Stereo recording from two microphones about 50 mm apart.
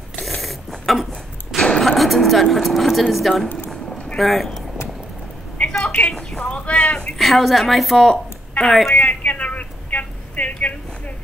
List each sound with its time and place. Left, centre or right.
0.2 s mechanisms: centre
1.8 s speech: centre
5.6 s a sound: centre
6.4 s speech: left
7.2 s speech: centre
8.9 s a sound: left